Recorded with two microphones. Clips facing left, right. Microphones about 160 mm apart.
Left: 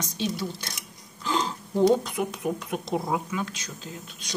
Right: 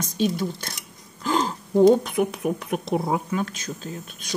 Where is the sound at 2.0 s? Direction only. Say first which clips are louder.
Right 5 dB; 60° right (ahead or behind).